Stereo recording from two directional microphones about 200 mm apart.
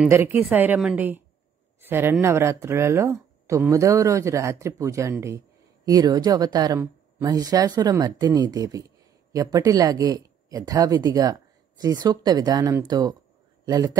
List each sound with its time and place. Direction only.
0.1 s speech: 10° right (ahead or behind)